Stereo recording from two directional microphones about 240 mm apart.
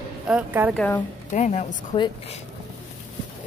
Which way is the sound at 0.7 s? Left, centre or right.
Centre.